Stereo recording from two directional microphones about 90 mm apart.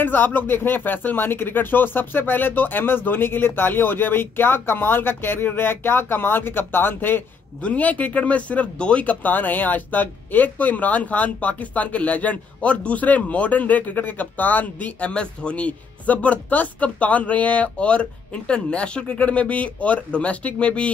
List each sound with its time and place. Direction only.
0.0 s speech: 20° left (ahead or behind)